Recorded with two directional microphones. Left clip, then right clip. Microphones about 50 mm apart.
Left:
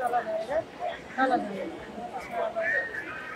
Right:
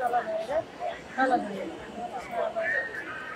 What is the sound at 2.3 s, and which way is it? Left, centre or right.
Speech, right.